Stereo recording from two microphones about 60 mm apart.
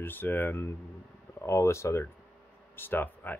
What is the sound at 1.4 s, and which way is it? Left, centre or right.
Speech, left.